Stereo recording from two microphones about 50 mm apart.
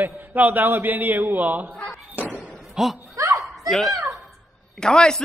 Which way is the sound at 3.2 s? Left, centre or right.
Right.